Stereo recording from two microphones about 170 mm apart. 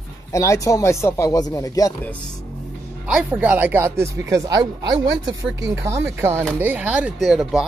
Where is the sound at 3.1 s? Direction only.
10° right (ahead or behind).